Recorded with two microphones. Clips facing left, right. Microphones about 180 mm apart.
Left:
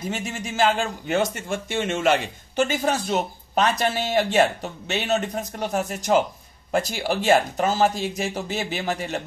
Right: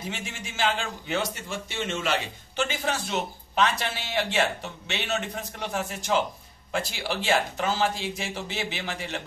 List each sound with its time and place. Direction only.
0.1 s a man's voice: 40° left (ahead or behind)